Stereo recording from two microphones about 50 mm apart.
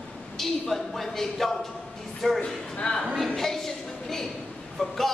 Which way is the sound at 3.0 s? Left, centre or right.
Centre.